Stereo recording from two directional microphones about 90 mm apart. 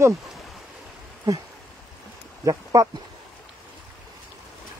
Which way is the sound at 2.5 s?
40° right (ahead or behind).